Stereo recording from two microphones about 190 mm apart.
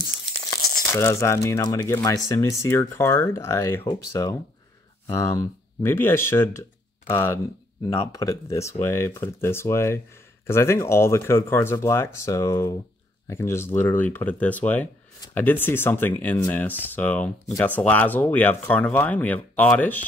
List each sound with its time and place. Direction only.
0.9 s speech: 15° left (ahead or behind)